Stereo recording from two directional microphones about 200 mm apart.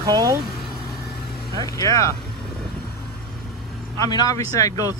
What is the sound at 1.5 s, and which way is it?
Speech, 15° left (ahead or behind).